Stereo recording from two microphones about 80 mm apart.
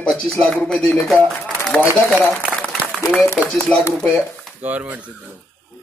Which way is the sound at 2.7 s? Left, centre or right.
Centre.